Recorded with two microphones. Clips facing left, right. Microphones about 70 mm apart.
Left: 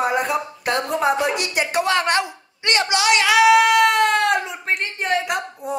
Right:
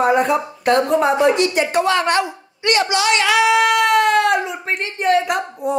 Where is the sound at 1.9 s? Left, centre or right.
Centre.